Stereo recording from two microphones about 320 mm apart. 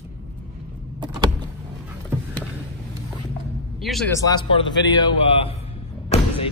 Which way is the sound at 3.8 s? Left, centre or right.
Centre.